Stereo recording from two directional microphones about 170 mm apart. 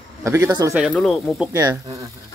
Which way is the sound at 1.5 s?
20° right (ahead or behind).